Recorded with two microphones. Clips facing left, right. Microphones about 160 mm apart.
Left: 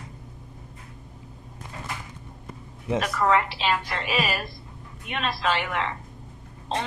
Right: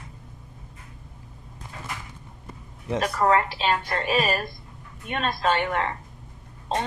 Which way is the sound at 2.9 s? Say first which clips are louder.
Right 1 dB; 40° right (ahead or behind).